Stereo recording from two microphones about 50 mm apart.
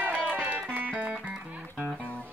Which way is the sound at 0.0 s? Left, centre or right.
Right.